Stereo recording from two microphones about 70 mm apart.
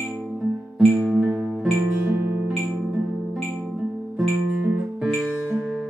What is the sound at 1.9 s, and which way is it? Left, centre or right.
Music, right.